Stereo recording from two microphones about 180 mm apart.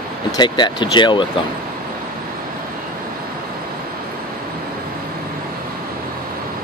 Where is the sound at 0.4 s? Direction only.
25° left (ahead or behind).